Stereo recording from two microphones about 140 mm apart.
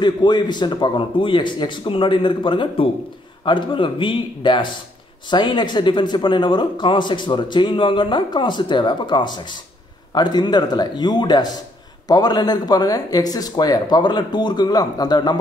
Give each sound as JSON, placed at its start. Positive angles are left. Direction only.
{"t": 0.0, "sound": "speech", "side_deg": 30}